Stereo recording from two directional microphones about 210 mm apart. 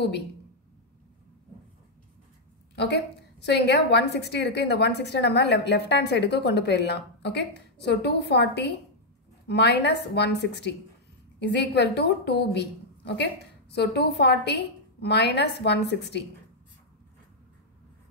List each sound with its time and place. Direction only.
2.7 s a woman's voice: 55° left (ahead or behind)